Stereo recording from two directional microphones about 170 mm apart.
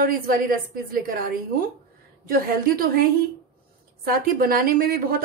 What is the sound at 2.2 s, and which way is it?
Speech, 60° right (ahead or behind).